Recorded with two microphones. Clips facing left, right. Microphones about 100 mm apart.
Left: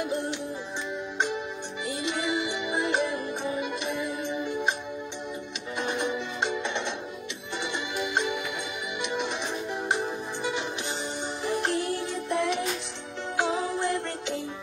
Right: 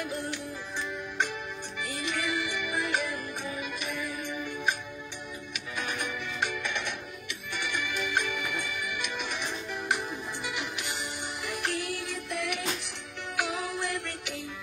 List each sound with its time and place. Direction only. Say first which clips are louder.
0.0 s music: left 5 dB; 25° left (ahead or behind)
1.9 s music: left 4 dB; 25° left (ahead or behind)
5.8 s music: left 6 dB; 25° left (ahead or behind)